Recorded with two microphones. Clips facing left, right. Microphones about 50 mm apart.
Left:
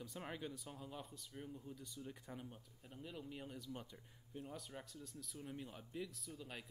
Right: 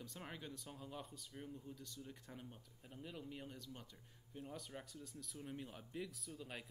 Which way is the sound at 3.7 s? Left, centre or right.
Centre.